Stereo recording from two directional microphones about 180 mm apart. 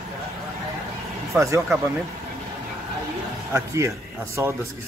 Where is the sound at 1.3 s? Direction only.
15° right (ahead or behind).